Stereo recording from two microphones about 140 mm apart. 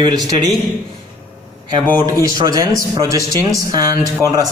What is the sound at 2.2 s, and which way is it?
Speech, 25° right (ahead or behind).